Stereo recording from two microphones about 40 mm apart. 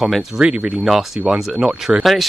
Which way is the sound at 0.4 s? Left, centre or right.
Right.